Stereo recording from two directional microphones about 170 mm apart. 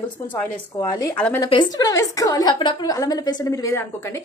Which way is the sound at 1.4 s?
25° left (ahead or behind).